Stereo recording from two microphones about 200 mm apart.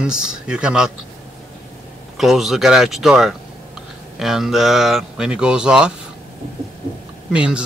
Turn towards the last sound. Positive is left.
turn(degrees=-5)  # may be behind; listen again after turning